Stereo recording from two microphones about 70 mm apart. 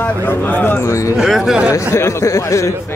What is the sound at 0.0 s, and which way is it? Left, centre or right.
Speech, left.